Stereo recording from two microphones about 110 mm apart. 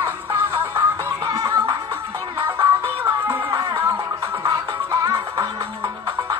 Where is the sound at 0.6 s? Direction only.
20° right (ahead or behind).